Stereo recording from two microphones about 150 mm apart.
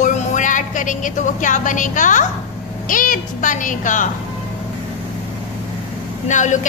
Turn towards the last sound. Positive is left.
turn(degrees=55)  # may be behind; listen again after turning